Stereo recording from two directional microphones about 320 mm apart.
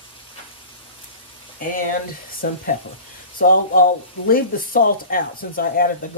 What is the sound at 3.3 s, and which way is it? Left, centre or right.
Speech, left.